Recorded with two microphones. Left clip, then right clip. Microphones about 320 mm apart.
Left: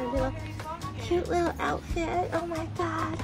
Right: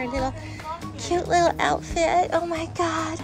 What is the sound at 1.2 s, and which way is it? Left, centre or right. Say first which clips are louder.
A child's voice: right 9 dB; centre.